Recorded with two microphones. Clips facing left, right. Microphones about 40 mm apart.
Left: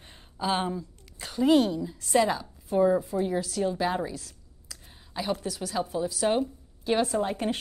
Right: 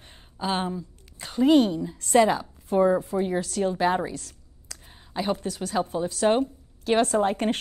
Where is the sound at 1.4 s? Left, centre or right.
Centre.